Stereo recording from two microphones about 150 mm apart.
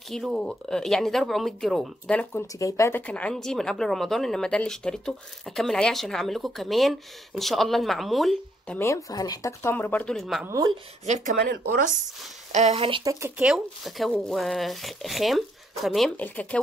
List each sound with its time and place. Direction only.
0.1 s speech: centre (ahead or behind)
2.6 s speech: 20° left (ahead or behind)
3.1 s speech: 5° left (ahead or behind)
8.7 s speech: 20° left (ahead or behind); by 10.4 s centre (ahead or behind)
10.4 s speech: 25° right (ahead or behind)
11.1 s speech: 50° right (ahead or behind)
11.4 s speech: 70° right (ahead or behind)
12.5 s speech: 45° right (ahead or behind)
13.0 s speech: 20° right (ahead or behind)
13.4 s speech: centre (ahead or behind)